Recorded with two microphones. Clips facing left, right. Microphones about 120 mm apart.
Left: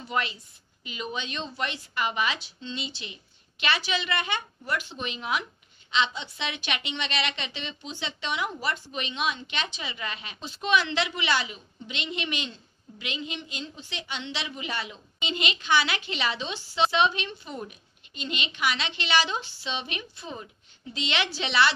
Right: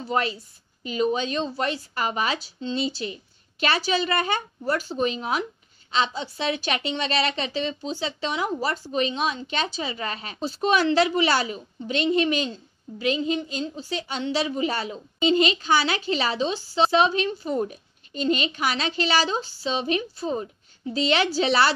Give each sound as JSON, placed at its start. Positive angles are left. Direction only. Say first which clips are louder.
{"t": 0.0, "sound": "a woman's voice", "louder": "right 5 dB", "side_deg": -35}